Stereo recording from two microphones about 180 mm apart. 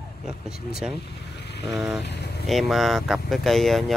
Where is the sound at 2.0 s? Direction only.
70° left (ahead or behind).